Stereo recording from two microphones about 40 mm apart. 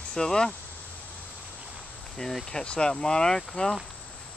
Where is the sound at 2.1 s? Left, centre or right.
Centre.